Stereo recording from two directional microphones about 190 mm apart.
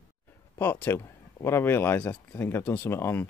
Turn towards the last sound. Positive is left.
turn(degrees=10)  # may be behind; listen again after turning